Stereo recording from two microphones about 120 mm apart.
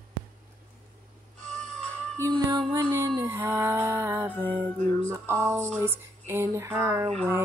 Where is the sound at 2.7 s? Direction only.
20° right (ahead or behind).